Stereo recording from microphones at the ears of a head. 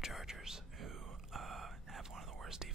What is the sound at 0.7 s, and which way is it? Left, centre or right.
Whispering, right.